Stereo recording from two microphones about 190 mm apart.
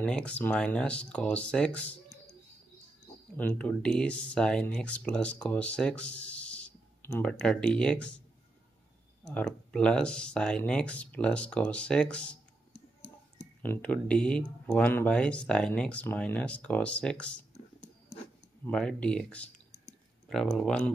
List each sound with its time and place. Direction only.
0.0 s speech: 5° left (ahead or behind)
3.3 s speech: 5° left (ahead or behind)
9.3 s speech: 5° left (ahead or behind)
12.7 s a sound: 70° left (ahead or behind)
13.6 s speech: 10° left (ahead or behind)
18.7 s speech: 5° left (ahead or behind)